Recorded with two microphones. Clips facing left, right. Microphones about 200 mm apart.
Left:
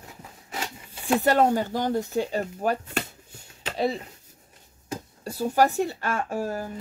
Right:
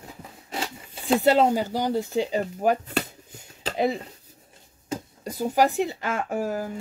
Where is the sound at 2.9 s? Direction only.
35° right (ahead or behind).